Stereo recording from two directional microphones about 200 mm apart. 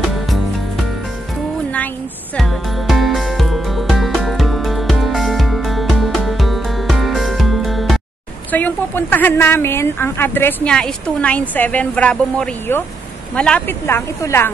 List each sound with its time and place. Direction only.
2.3 s music: centre (ahead or behind)
8.5 s a woman's voice: 10° left (ahead or behind)